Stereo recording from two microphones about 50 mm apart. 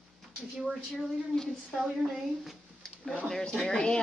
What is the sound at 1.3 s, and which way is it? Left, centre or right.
Speech, centre.